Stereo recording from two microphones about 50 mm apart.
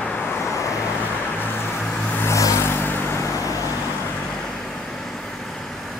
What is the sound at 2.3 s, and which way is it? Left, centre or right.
Vehicle, left.